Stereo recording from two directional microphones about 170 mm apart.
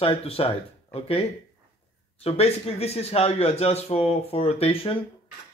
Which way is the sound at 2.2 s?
35° left (ahead or behind).